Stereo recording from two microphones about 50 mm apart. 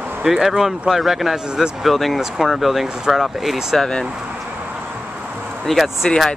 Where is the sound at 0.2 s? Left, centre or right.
Centre.